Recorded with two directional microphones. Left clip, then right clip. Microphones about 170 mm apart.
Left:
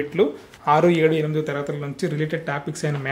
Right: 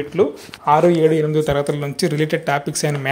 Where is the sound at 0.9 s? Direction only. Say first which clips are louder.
Right 4 dB; 20° right (ahead or behind).